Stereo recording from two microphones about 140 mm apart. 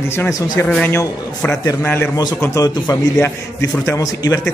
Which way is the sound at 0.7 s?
10° left (ahead or behind).